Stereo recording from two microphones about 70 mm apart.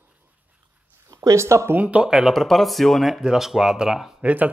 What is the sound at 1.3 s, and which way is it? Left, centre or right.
Speech, right.